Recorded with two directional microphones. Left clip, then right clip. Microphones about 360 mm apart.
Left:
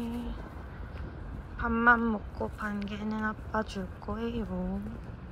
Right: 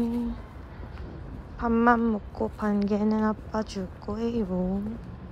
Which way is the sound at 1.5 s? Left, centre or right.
Centre.